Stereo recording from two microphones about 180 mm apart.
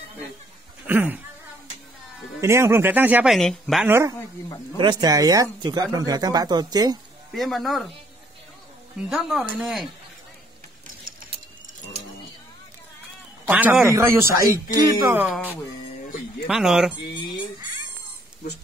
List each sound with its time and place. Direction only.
0.8 s speech: 10° right (ahead or behind)
2.4 s speech: 15° right (ahead or behind)
3.3 s speech: centre (ahead or behind)
3.8 s speech: 15° right (ahead or behind)
7.3 s speech: centre (ahead or behind)
9.1 s speech: centre (ahead or behind)
13.5 s speech: 10° right (ahead or behind)
16.4 s speech: 5° right (ahead or behind)